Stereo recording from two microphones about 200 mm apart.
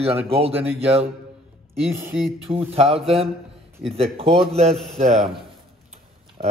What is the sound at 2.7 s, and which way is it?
Speech, 30° right (ahead or behind).